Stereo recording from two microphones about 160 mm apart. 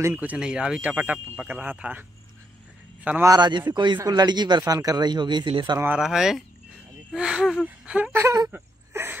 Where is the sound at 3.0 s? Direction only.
10° right (ahead or behind).